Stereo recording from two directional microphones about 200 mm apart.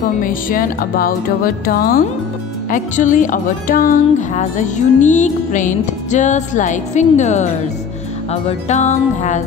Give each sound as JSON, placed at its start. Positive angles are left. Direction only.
{"t": 0.2, "sound": "music", "side_deg": 45}